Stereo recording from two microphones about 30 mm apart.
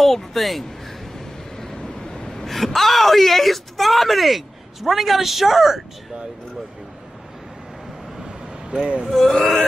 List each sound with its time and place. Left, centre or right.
0.0 s speech: centre
1.1 s vehicle: centre
1.8 s vehicle: left
2.4 s speech: centre
8.2 s vehicle: right
8.8 s speech: right
9.3 s a sound: left